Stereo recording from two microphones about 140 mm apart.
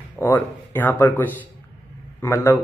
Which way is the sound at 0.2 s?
15° left (ahead or behind).